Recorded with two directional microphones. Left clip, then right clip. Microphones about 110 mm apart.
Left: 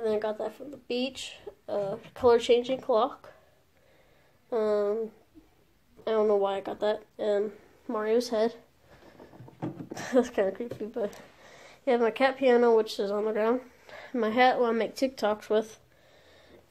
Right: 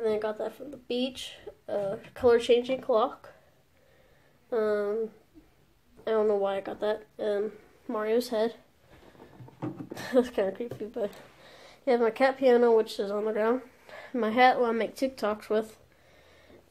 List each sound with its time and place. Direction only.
0.0 s speech: 15° left (ahead or behind)
4.5 s speech: 20° left (ahead or behind)
6.0 s speech: 25° left (ahead or behind)
9.8 s speech: 20° left (ahead or behind)
13.8 s speech: 15° left (ahead or behind)